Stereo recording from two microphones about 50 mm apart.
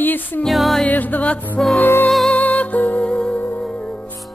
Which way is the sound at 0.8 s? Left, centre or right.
Left.